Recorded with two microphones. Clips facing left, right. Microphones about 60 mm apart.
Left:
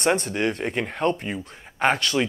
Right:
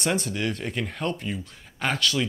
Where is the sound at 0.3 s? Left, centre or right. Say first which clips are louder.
Left 4 dB; left.